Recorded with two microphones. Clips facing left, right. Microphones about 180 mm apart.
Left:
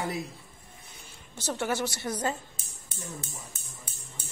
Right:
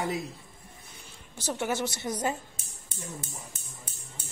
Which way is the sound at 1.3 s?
15° right (ahead or behind).